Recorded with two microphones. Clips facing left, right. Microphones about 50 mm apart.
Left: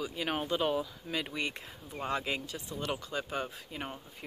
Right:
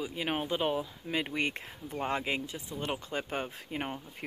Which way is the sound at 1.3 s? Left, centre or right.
Right.